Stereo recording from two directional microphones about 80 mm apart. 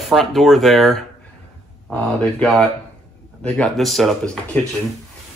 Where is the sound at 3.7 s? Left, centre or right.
Centre.